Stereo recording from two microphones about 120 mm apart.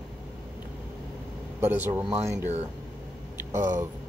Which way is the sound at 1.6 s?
15° right (ahead or behind).